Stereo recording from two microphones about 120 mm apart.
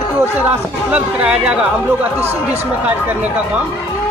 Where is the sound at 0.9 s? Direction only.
10° right (ahead or behind).